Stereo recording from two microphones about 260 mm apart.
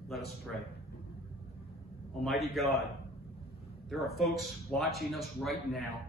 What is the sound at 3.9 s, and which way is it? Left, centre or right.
A man's voice, centre.